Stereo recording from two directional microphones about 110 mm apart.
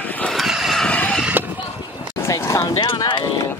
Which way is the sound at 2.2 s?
25° left (ahead or behind).